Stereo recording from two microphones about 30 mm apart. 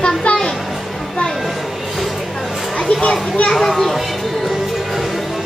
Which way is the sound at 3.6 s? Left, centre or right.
Centre.